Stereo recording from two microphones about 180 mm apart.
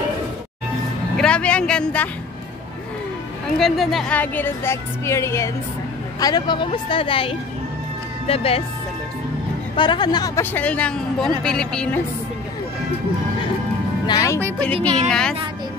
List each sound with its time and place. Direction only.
1.1 s speech: 5° left (ahead or behind)
3.5 s speech: centre (ahead or behind); by 8.6 s 35° left (ahead or behind)
9.8 s speech: 25° left (ahead or behind); by 12.0 s 5° left (ahead or behind)
14.0 s speech: 20° left (ahead or behind)
14.6 s speech: 10° left (ahead or behind)